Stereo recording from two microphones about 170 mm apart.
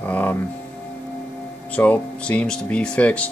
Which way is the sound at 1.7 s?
10° left (ahead or behind).